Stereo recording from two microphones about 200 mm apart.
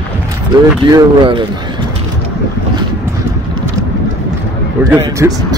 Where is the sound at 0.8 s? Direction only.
25° right (ahead or behind).